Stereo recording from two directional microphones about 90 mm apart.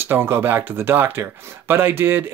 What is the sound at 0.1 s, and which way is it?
Speech, 25° right (ahead or behind).